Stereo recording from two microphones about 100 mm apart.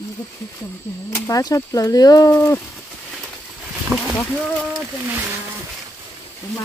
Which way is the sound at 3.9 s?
20° right (ahead or behind).